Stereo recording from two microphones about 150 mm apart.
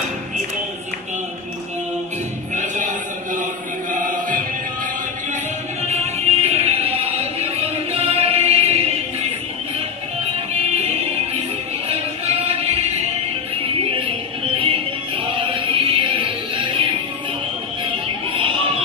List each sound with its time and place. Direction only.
2.5 s music: 55° right (ahead or behind)
3.9 s music: 60° right (ahead or behind)
5.8 s music: 45° right (ahead or behind)
13.9 s music: 35° right (ahead or behind)
18.0 s music: 35° right (ahead or behind)